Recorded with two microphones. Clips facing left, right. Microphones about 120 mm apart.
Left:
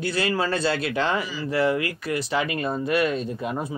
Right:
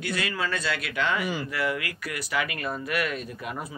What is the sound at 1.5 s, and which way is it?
Speech, 30° left (ahead or behind).